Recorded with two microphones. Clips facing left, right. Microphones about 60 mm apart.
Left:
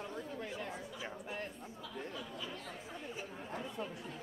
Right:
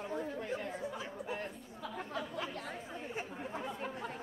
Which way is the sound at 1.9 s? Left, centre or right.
Right.